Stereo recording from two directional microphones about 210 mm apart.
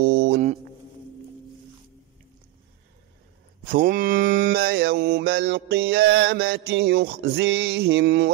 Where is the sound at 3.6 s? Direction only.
45° right (ahead or behind).